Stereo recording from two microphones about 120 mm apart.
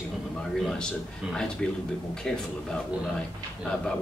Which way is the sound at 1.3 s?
5° left (ahead or behind).